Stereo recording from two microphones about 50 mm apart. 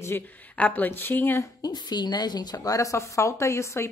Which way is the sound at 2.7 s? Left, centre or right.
Left.